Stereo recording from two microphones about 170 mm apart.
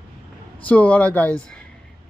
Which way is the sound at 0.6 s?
10° left (ahead or behind).